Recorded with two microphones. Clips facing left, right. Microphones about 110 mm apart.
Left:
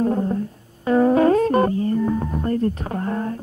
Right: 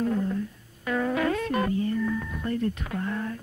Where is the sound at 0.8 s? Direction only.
35° left (ahead or behind).